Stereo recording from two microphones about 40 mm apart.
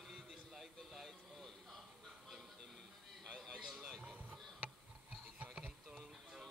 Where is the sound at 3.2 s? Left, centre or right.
Centre.